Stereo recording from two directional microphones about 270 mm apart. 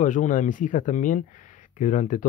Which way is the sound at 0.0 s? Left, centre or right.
Left.